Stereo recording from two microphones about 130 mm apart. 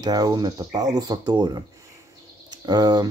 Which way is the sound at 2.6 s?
30° right (ahead or behind).